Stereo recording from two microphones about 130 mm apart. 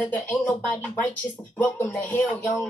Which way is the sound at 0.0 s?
15° left (ahead or behind).